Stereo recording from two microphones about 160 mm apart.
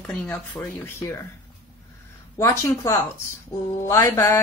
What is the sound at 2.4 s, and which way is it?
Mantra, 15° left (ahead or behind).